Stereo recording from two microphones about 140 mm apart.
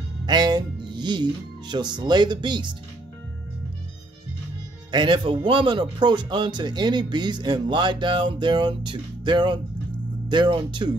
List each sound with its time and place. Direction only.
0.3 s speech: 30° right (ahead or behind)
4.9 s speech: 35° right (ahead or behind)